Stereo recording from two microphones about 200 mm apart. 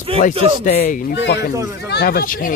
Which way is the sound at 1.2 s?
60° left (ahead or behind).